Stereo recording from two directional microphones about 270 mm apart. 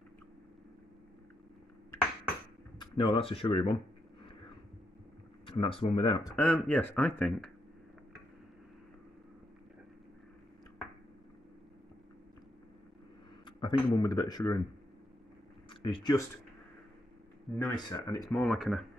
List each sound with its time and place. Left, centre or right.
2.8 s speech: centre
5.5 s speech: centre
6.3 s speech: centre
13.5 s speech: centre
15.8 s speech: centre
17.6 s speech: centre
18.4 s speech: centre